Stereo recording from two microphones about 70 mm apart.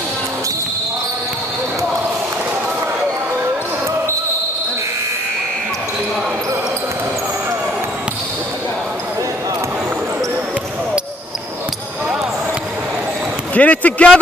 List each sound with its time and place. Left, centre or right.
13.6 s speech: left